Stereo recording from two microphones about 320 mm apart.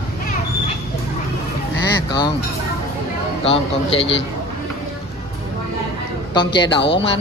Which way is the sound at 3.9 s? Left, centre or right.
Centre.